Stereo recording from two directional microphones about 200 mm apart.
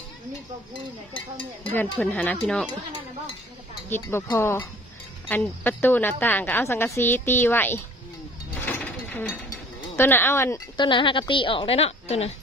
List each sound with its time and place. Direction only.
1.6 s a woman's voice: 10° left (ahead or behind)
3.9 s a woman's voice: 10° left (ahead or behind)
8.6 s pulleys: 10° left (ahead or behind)
10.8 s a woman's voice: 25° left (ahead or behind)